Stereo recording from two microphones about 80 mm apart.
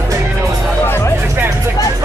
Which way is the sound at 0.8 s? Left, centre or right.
Left.